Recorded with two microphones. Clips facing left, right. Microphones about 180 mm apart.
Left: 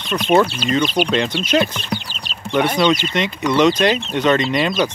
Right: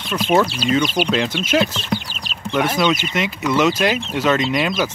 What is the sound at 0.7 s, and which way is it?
Speech, 10° right (ahead or behind).